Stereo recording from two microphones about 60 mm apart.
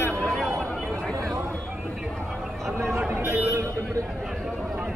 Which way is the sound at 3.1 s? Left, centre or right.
Right.